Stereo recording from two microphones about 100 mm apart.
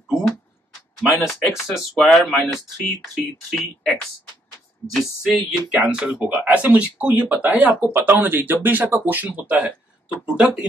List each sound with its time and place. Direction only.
1.1 s speech: centre (ahead or behind)
5.2 s speech: 5° right (ahead or behind)